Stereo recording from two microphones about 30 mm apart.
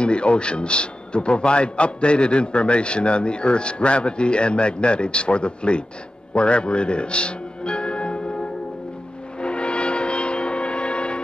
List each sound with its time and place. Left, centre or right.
0.0 s a man's voice: left
6.3 s music: left
9.4 s music: left